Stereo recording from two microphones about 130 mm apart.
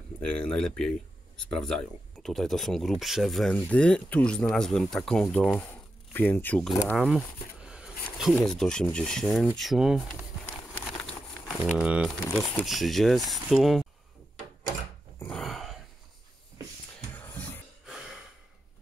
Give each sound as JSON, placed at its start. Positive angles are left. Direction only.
{"t": 0.2, "sound": "speech", "side_deg": 5}
{"t": 7.0, "sound": "a sound", "side_deg": -5}
{"t": 8.5, "sound": "speech", "side_deg": 5}
{"t": 11.4, "sound": "speech", "side_deg": -5}
{"t": 15.3, "sound": "dog", "side_deg": 0}
{"t": 17.1, "sound": "music", "side_deg": 15}